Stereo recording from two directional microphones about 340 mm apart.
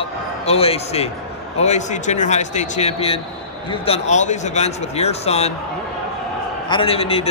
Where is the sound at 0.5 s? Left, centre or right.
Centre.